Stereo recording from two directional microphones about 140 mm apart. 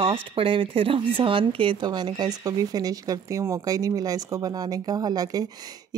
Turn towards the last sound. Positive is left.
turn(degrees=-30)  # may be behind; listen again after turning